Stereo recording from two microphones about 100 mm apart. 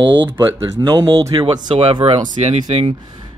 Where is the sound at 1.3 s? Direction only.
60° right (ahead or behind).